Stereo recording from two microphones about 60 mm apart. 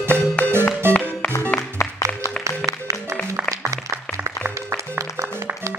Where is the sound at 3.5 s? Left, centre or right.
Right.